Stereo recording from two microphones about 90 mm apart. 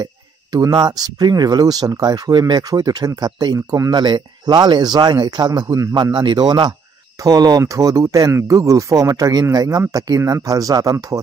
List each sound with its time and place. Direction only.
0.0 s speech: 50° right (ahead or behind)
4.0 s speech: 55° right (ahead or behind); by 6.1 s 40° right (ahead or behind)
6.1 s speech: 55° right (ahead or behind)